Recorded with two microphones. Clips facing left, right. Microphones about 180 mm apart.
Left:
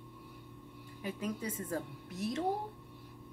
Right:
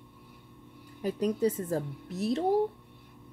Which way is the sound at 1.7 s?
40° right (ahead or behind).